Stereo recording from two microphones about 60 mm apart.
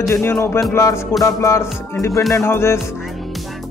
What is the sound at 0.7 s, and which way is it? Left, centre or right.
Speech, left.